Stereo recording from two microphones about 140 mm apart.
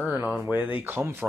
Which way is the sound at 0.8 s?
15° right (ahead or behind).